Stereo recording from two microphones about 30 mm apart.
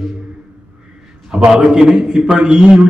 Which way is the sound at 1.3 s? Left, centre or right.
Right.